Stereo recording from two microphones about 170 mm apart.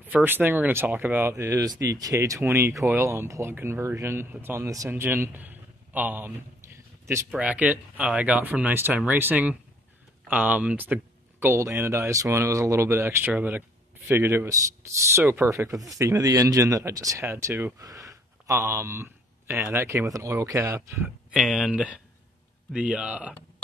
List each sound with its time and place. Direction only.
0.0 s speech: 10° right (ahead or behind)
21.3 s speech: centre (ahead or behind)